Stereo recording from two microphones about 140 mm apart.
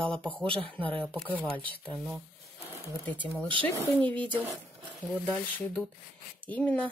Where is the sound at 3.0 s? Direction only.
10° left (ahead or behind).